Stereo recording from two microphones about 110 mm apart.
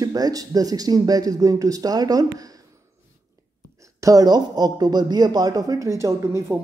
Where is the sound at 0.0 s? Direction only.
35° right (ahead or behind).